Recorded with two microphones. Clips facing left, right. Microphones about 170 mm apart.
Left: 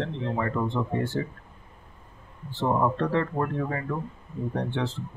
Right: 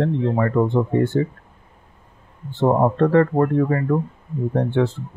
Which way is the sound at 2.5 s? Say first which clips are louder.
Right 7 dB; 50° right (ahead or behind).